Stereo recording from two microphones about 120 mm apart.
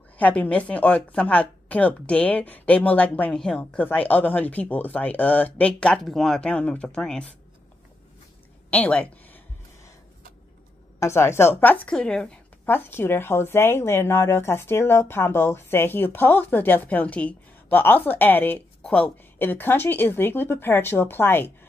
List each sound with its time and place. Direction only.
0.2 s speech: 10° left (ahead or behind)
8.6 s a sound: 10° left (ahead or behind)
11.0 s speech: 20° left (ahead or behind); by 12.4 s 5° left (ahead or behind)
12.6 s speech: 20° left (ahead or behind)